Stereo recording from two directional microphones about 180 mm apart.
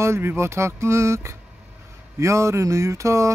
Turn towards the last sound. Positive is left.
turn(degrees=-15)  # may be behind; listen again after turning